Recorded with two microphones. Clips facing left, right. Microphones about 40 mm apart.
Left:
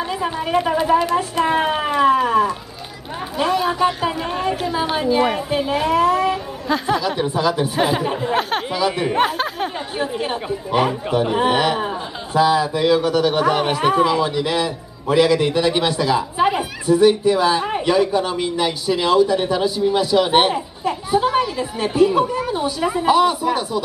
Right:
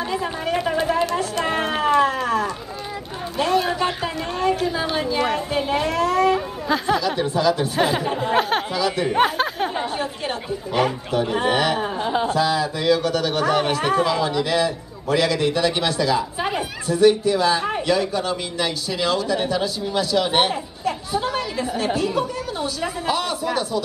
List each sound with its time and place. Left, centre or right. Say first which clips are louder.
0.1 s a woman's voice: left 5 dB; centre
1.4 s a sound: left 3 dB; centre
4.9 s a man's voice: left 4 dB; centre
5.6 s speech: even; centre
5.9 s a man's voice: left 3 dB; centre
8.2 s a sound: even; centre
8.7 s a man's voice: left 4 dB; centre
9.2 s a sound: right 1 dB; centre
9.9 s a man's voice: left 3 dB; centre
12.0 s speech: right 8 dB; centre
12.3 s a man's voice: left 4 dB; centre